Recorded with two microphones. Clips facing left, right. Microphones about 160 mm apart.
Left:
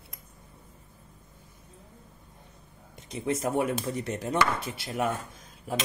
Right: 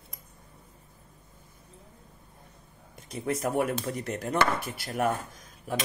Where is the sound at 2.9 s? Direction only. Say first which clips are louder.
Left 1 dB; 25° left (ahead or behind).